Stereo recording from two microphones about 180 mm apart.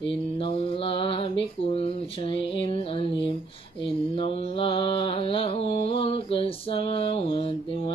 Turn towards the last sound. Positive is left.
turn(degrees=30)  # may be behind; listen again after turning